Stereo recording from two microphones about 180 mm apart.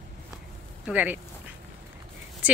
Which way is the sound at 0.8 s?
10° right (ahead or behind).